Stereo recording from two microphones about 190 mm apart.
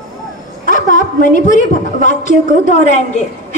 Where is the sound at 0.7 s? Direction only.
45° left (ahead or behind).